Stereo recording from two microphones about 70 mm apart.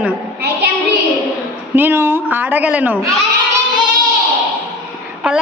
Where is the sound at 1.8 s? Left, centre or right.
Right.